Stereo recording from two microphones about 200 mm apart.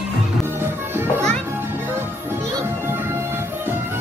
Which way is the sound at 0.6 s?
10° right (ahead or behind).